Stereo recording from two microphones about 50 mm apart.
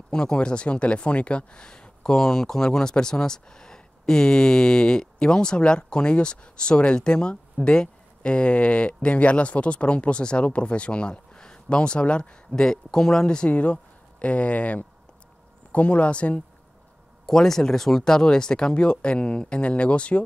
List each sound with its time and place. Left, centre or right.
0.1 s speech: centre
17.3 s speech: centre